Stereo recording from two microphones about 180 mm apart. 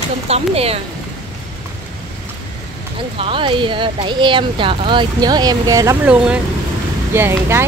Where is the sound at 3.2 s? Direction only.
30° right (ahead or behind).